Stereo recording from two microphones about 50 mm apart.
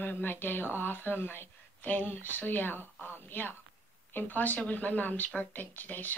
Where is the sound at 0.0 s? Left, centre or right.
Left.